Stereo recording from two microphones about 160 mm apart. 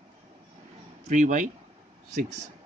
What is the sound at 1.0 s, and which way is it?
Speech, 50° right (ahead or behind).